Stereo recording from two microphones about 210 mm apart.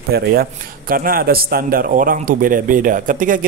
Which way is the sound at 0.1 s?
45° right (ahead or behind).